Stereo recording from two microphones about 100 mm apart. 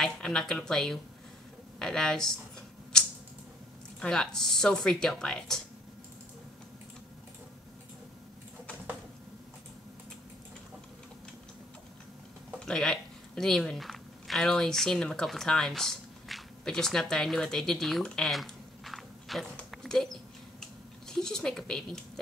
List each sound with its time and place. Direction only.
0.0 s speech: 5° left (ahead or behind)
4.0 s speech: 5° left (ahead or behind)
12.5 s speech: 5° left (ahead or behind)
19.7 s a sound: 5° left (ahead or behind)
21.1 s speech: 5° left (ahead or behind)